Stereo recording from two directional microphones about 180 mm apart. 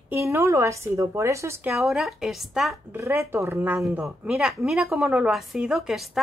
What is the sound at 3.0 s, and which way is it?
A woman's voice, 15° right (ahead or behind).